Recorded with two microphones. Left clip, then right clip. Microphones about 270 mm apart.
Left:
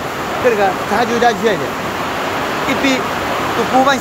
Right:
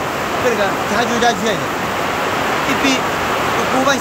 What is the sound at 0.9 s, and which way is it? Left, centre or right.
Speech, centre.